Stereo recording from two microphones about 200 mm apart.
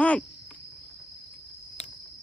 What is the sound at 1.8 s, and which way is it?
Cricket, 35° left (ahead or behind).